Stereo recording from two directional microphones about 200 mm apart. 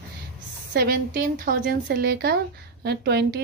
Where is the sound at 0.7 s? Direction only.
50° right (ahead or behind).